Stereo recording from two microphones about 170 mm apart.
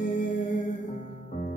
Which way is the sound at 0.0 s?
45° left (ahead or behind).